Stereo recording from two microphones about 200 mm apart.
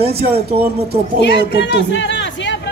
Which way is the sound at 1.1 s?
60° left (ahead or behind).